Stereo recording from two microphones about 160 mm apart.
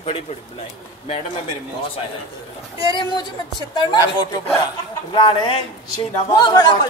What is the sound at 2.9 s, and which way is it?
Speech, 30° left (ahead or behind).